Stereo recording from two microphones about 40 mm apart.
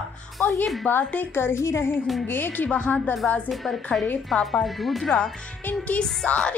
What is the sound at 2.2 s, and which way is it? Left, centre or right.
Speech, left.